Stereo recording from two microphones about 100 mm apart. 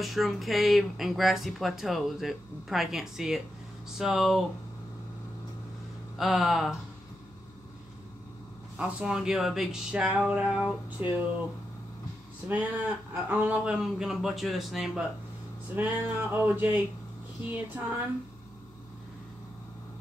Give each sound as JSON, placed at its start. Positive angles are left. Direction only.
{"t": 0.0, "sound": "speech", "side_deg": 0}
{"t": 6.1, "sound": "speech", "side_deg": 0}
{"t": 8.7, "sound": "speech", "side_deg": -10}
{"t": 12.4, "sound": "speech", "side_deg": -20}
{"t": 13.8, "sound": "speech", "side_deg": -5}
{"t": 15.7, "sound": "music", "side_deg": -20}
{"t": 17.5, "sound": "speech", "side_deg": -15}